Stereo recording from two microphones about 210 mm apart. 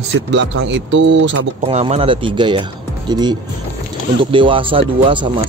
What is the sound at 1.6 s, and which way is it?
Speech, 30° right (ahead or behind).